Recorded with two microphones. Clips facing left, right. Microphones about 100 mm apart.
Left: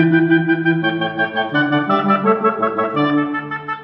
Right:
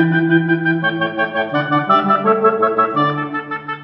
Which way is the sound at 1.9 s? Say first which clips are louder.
Right 1 dB; 25° right (ahead or behind).